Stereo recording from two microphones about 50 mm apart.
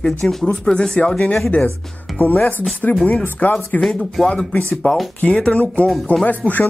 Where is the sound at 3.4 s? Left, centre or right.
Left.